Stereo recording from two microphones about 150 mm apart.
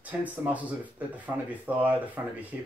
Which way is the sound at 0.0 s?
10° right (ahead or behind).